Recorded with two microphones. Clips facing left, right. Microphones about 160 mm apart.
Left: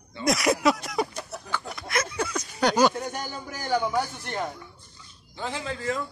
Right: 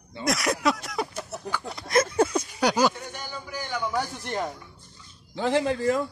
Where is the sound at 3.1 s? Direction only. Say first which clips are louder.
Left 1 dB; 45° left (ahead or behind).